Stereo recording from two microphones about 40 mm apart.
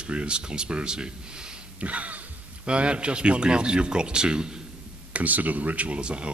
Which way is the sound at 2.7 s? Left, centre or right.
Right.